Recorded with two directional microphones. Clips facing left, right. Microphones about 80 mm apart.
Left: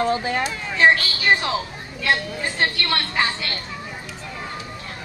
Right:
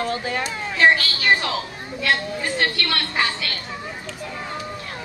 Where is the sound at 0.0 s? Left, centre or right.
Left.